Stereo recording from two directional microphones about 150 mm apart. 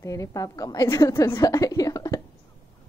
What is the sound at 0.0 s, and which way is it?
A woman's voice, 20° left (ahead or behind).